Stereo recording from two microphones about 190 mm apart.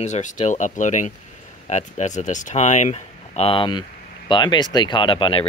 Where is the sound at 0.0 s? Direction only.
40° left (ahead or behind).